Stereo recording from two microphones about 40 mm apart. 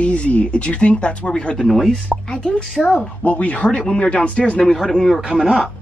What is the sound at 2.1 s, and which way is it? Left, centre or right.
Speech, left.